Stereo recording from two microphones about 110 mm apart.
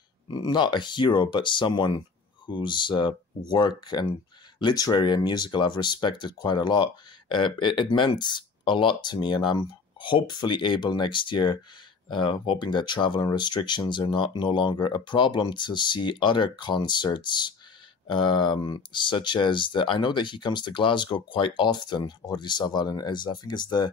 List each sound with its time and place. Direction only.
0.3 s speech: 40° left (ahead or behind)